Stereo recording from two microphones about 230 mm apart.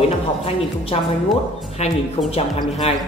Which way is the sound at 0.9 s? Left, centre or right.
Left.